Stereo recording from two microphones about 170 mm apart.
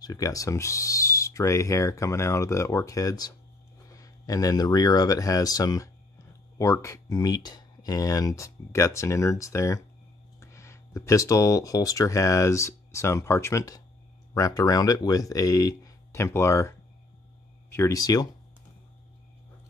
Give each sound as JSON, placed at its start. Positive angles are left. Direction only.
{"t": 0.0, "sound": "owl", "side_deg": 20}
{"t": 3.9, "sound": "speech", "side_deg": 20}